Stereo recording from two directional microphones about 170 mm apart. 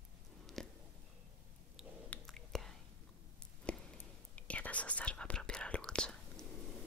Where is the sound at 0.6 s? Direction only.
Centre (ahead or behind).